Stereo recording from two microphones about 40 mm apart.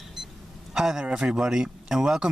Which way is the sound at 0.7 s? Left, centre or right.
Centre.